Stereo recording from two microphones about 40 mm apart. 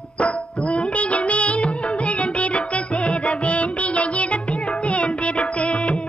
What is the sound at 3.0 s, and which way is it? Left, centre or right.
Music, left.